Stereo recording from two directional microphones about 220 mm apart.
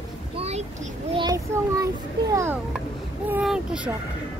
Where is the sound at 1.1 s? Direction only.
15° right (ahead or behind).